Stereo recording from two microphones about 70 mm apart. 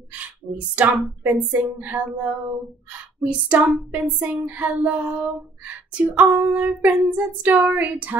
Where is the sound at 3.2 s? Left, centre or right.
Centre.